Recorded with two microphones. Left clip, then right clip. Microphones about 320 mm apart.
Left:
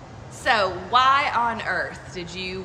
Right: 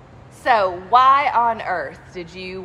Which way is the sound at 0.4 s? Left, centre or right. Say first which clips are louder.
Right 4 dB; centre.